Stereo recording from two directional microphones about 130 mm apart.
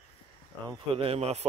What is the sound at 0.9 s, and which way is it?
Speech, 45° right (ahead or behind).